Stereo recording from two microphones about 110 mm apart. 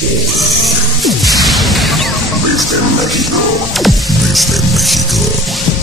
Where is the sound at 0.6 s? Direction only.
Centre (ahead or behind).